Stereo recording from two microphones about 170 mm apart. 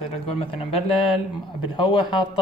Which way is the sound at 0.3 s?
35° left (ahead or behind).